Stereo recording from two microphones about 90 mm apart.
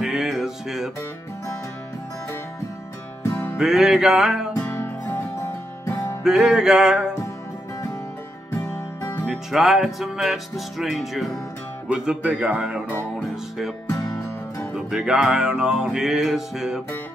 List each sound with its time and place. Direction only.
0.0 s music: 5° right (ahead or behind)
3.3 s music: 30° left (ahead or behind)
3.5 s music: 5° right (ahead or behind)
4.6 s music: 30° left (ahead or behind)
5.9 s music: 40° left (ahead or behind)
6.2 s speech: 5° right (ahead or behind)
8.6 s music: 35° left (ahead or behind)
9.2 s music: centre (ahead or behind)
11.9 s speech: 10° right (ahead or behind)
13.8 s music: 35° left (ahead or behind)
14.9 s music: 5° right (ahead or behind)